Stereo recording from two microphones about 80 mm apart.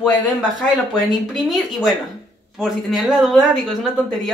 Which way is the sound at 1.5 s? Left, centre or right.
Centre.